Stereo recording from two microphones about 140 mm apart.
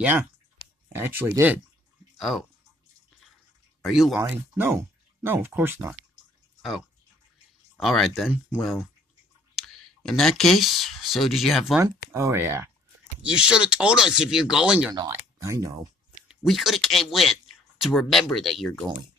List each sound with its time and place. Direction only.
0.9 s speech: 15° right (ahead or behind)
2.1 s speech: centre (ahead or behind)
3.8 s speech: 5° right (ahead or behind)
4.2 s speech: 15° right (ahead or behind)
7.8 s speech: centre (ahead or behind)
9.6 s speech: 5° left (ahead or behind)
11.8 s speech: 20° right (ahead or behind)
13.2 s speech: 5° right (ahead or behind)
15.0 s speech: 20° right (ahead or behind)
16.3 s speech: centre (ahead or behind)